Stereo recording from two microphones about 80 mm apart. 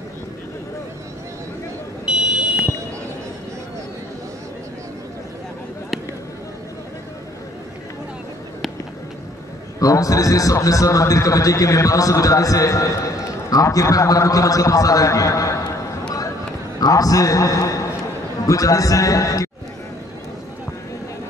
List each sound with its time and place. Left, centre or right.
2.0 s fire alarm: centre
9.8 s a man's voice: left
16.8 s a man's voice: left